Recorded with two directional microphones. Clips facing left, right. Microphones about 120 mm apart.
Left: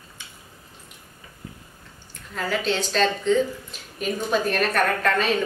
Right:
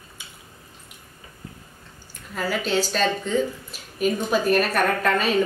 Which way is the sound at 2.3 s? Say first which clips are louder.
Right 1 dB; 5° right (ahead or behind).